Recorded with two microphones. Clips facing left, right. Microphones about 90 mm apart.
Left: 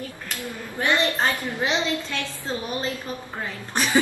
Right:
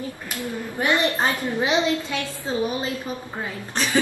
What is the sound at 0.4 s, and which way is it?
A woman's voice, 20° right (ahead or behind).